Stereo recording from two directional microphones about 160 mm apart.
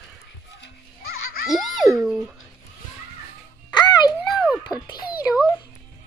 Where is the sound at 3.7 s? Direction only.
25° left (ahead or behind).